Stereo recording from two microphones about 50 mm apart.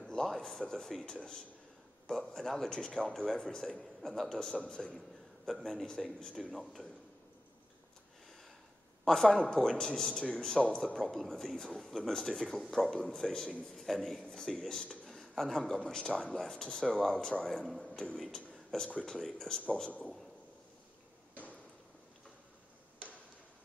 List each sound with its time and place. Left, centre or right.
0.0 s a sound: centre
1.1 s a man's voice: centre
9.0 s a man's voice: centre